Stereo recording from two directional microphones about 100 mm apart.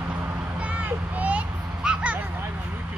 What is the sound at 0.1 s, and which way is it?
Vehicle, 20° right (ahead or behind).